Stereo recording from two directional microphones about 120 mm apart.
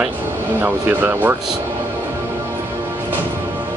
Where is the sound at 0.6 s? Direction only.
15° right (ahead or behind).